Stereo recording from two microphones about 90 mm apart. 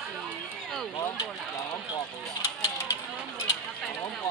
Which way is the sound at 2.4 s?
30° left (ahead or behind).